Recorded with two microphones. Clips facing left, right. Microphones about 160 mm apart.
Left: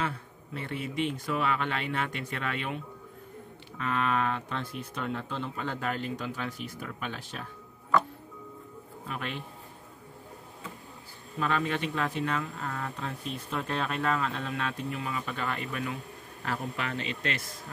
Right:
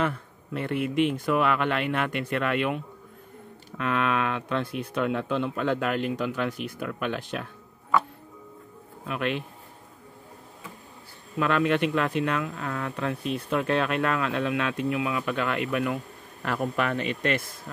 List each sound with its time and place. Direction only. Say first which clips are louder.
0.0 s speech: right 6 dB; 60° right (ahead or behind)
9.0 s speech: right 8 dB; 75° right (ahead or behind)
11.3 s speech: right 6 dB; 70° right (ahead or behind); by 17.4 s 55° right (ahead or behind)